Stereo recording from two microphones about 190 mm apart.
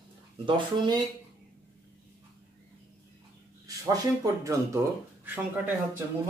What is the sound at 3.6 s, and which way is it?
Speech, 20° right (ahead or behind).